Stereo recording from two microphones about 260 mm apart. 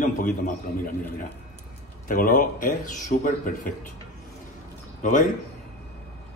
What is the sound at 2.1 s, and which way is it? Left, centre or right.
A man's voice, left.